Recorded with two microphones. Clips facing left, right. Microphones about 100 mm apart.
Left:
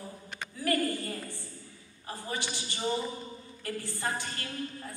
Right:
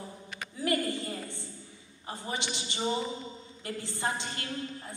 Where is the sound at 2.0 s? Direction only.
20° right (ahead or behind).